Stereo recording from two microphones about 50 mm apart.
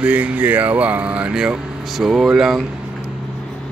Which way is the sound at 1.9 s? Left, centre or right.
Centre.